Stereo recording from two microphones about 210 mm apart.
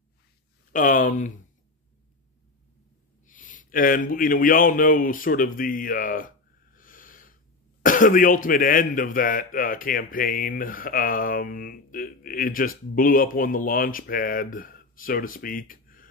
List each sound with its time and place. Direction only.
0.7 s speech: 40° left (ahead or behind)
3.3 s a man's voice: 40° left (ahead or behind)